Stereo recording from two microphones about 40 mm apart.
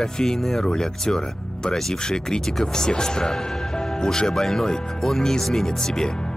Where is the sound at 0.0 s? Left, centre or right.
Centre.